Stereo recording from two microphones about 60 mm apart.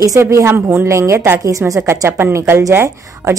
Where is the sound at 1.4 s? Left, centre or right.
Right.